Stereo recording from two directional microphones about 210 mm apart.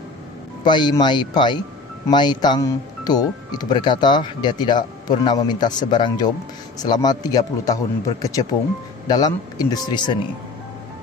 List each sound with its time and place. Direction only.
0.7 s a man's voice: 20° left (ahead or behind)